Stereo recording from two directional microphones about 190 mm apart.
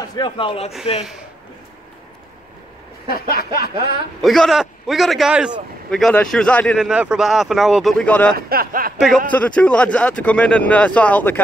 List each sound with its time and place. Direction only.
0.0 s a man's voice: 20° left (ahead or behind)
3.1 s speech: 50° left (ahead or behind)
4.2 s a man's voice: centre (ahead or behind)
6.9 s a man's voice: 5° right (ahead or behind)
8.4 s speech: 50° right (ahead or behind)
9.3 s speech: 5° left (ahead or behind)